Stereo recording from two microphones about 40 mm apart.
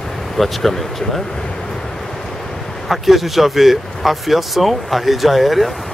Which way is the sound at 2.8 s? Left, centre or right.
Centre.